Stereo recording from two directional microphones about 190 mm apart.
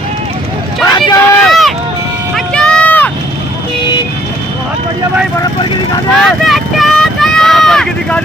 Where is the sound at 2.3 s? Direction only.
5° left (ahead or behind).